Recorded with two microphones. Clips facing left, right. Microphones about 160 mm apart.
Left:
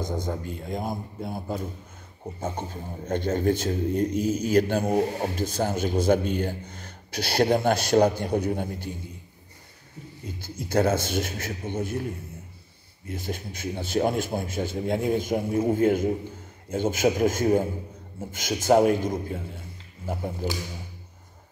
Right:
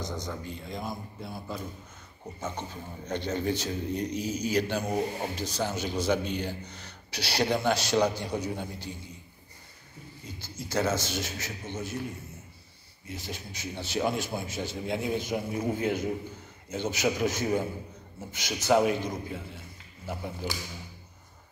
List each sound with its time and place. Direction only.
0.0 s speech: 50° left (ahead or behind)
2.4 s speech: 50° left (ahead or behind)
10.2 s speech: 55° left (ahead or behind)
13.0 s speech: 50° left (ahead or behind)